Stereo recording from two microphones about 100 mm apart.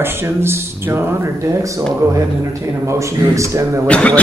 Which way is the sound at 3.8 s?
10° left (ahead or behind).